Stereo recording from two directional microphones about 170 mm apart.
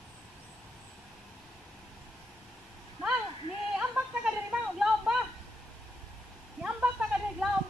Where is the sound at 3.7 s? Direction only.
5° right (ahead or behind).